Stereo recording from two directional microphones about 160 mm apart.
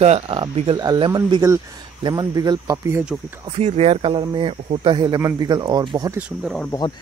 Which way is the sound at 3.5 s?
40° right (ahead or behind).